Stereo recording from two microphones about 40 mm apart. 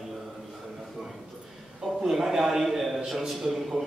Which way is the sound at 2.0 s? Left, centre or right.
Centre.